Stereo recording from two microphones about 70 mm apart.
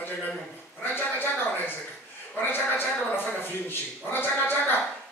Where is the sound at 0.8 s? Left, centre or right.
Left.